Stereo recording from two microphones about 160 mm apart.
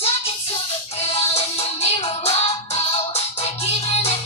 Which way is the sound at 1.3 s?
40° left (ahead or behind).